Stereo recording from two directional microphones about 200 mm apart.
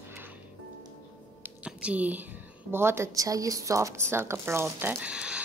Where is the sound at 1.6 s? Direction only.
5° right (ahead or behind).